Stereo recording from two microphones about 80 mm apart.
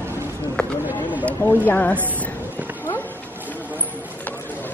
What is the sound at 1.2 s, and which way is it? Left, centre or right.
Speech, left.